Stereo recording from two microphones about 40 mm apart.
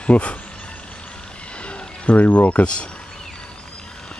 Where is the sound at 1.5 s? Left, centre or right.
Left.